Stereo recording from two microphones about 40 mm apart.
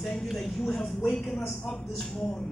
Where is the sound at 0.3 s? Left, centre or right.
Centre.